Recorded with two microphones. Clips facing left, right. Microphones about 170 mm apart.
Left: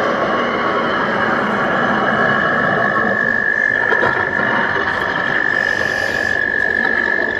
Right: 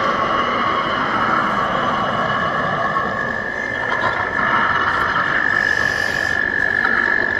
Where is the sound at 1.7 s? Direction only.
55° left (ahead or behind).